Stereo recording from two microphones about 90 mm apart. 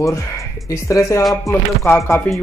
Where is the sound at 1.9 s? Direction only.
30° left (ahead or behind).